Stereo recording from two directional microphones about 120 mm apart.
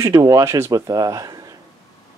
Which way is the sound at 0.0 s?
30° right (ahead or behind).